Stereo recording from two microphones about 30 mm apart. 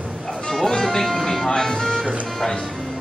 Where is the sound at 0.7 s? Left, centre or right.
Centre.